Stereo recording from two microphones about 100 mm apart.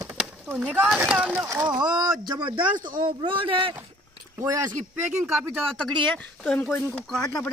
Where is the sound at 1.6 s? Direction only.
45° right (ahead or behind).